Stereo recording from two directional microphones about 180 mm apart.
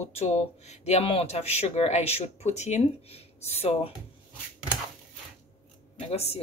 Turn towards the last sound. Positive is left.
turn(degrees=35)  # may be behind; listen again after turning